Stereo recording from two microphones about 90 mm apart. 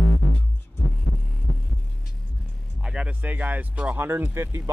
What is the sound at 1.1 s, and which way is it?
Heart sounds, 20° right (ahead or behind).